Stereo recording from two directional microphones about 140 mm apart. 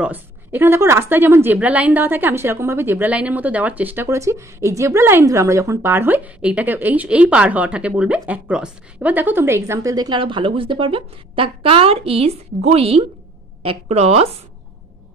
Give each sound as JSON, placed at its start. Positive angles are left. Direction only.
{"t": 0.0, "sound": "a woman's voice", "side_deg": -15}